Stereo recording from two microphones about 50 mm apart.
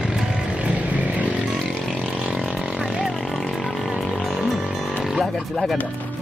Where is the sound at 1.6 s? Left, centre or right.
Centre.